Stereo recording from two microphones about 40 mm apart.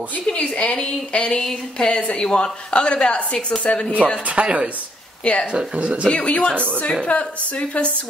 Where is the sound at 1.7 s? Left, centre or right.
Left.